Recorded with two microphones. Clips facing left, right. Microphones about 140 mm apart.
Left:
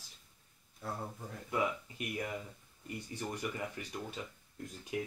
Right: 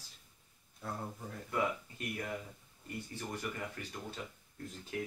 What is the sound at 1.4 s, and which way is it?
Speech, 15° left (ahead or behind).